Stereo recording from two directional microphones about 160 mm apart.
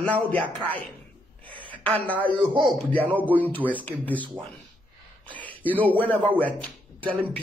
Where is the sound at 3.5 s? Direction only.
10° left (ahead or behind).